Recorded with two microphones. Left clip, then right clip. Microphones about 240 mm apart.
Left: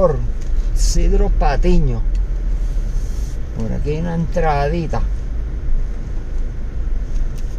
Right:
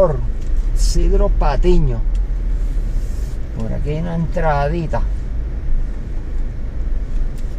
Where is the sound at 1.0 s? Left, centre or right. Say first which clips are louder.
Right 1 dB; left.